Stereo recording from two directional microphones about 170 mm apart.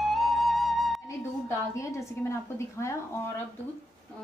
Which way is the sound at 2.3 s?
15° left (ahead or behind).